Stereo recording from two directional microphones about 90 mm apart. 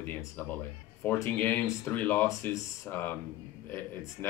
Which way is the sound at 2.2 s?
35° left (ahead or behind).